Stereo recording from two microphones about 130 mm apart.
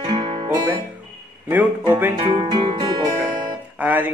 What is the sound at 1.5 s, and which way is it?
Speech, 15° right (ahead or behind).